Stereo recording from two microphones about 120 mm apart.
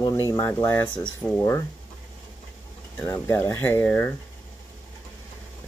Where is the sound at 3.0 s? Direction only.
25° left (ahead or behind).